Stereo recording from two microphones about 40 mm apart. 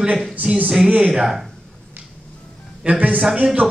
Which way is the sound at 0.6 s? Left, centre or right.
Right.